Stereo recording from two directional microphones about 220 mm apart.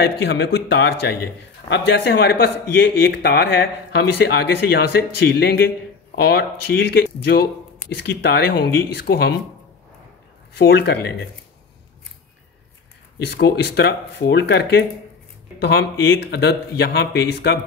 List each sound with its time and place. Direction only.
0.0 s speech: 50° left (ahead or behind)
8.0 s speech: 45° left (ahead or behind)
10.6 s speech: 45° left (ahead or behind)
13.4 s speech: 50° left (ahead or behind)